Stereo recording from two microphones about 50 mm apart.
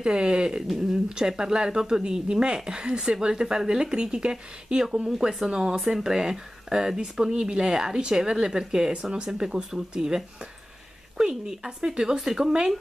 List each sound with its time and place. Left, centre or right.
0.0 s a woman's voice: centre